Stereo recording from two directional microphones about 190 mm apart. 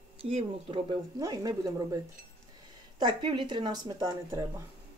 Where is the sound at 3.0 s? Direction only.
25° right (ahead or behind).